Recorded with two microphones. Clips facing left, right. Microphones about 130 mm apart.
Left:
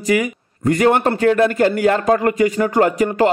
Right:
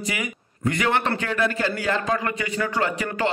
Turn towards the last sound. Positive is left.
turn(degrees=45)  # may be behind; listen again after turning